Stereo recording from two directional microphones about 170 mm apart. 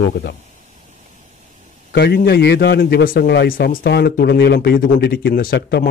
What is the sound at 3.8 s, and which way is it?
Speech, 75° left (ahead or behind).